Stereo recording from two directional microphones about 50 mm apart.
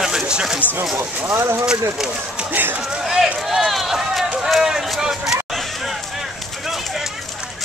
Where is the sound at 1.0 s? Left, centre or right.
Right.